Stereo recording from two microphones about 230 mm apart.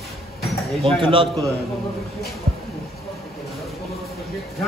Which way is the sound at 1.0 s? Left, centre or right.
Right.